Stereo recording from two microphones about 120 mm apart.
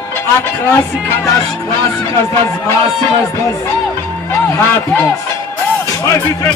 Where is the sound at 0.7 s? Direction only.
25° left (ahead or behind).